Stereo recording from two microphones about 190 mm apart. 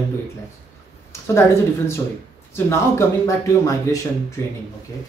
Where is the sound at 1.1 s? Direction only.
15° left (ahead or behind).